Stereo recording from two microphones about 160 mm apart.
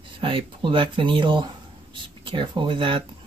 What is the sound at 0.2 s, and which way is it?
Speech, 35° right (ahead or behind).